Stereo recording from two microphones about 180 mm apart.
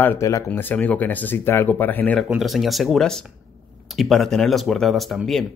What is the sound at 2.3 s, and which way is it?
Speech, centre (ahead or behind).